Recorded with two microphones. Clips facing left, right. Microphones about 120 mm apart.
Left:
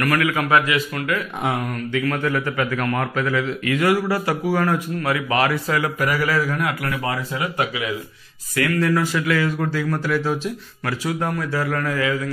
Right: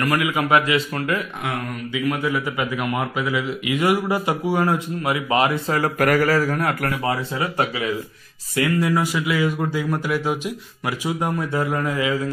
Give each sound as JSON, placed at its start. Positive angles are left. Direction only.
{"t": 0.0, "sound": "a man's voice", "side_deg": -20}
{"t": 1.9, "sound": "a man's voice", "side_deg": -10}
{"t": 5.7, "sound": "speech", "side_deg": -40}
{"t": 5.9, "sound": "a man's voice", "side_deg": -50}
{"t": 6.9, "sound": "speech", "side_deg": -30}
{"t": 8.5, "sound": "a man's voice", "side_deg": -15}